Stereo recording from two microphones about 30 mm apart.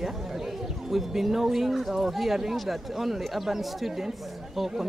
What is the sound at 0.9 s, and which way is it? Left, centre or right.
Speech, centre.